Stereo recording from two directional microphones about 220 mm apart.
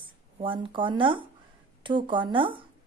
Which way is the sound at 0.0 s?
25° right (ahead or behind).